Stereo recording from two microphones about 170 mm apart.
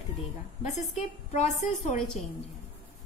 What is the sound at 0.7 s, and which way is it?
A woman's voice, 40° left (ahead or behind).